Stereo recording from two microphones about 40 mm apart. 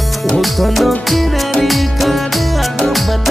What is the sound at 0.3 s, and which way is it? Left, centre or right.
Music, centre.